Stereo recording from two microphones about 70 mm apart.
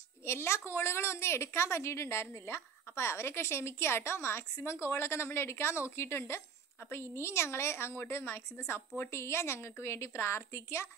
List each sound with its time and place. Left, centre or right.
0.2 s a woman's voice: left